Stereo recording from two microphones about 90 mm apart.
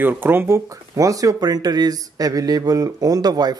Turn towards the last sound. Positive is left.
turn(degrees=-50)  # may be behind; listen again after turning